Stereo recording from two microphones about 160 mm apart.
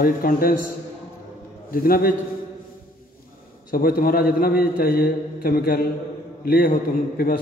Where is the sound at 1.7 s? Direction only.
65° left (ahead or behind).